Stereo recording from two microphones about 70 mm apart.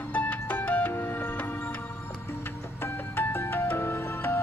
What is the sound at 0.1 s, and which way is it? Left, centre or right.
Music, left.